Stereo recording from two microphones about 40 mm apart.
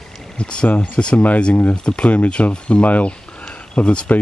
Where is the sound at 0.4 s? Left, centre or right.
Left.